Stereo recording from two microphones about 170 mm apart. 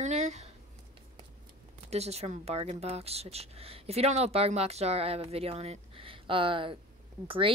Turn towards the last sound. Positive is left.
turn(degrees=-30)  # may be behind; listen again after turning